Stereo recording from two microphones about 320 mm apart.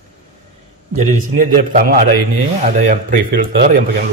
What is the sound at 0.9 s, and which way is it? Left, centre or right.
A man's voice, right.